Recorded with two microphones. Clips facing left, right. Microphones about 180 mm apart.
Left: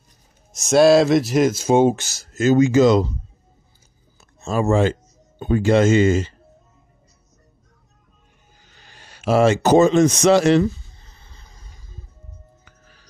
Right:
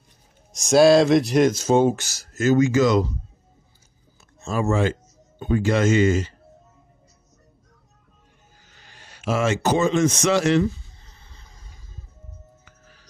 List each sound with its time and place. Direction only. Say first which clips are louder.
0.5 s speech: left 1 dB; centre (ahead or behind)
1.9 s speech: left 3 dB; 25° left (ahead or behind)
4.4 s speech: left 4 dB; 35° left (ahead or behind)
8.8 s speech: left 4 dB; 35° left (ahead or behind)